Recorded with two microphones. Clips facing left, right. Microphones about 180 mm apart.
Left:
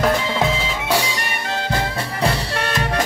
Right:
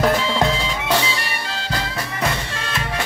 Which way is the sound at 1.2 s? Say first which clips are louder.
Left 4 dB; 50° left (ahead or behind).